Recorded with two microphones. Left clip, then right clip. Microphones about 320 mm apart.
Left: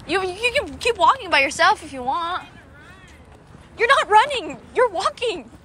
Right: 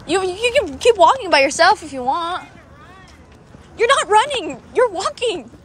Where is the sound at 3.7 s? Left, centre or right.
Centre.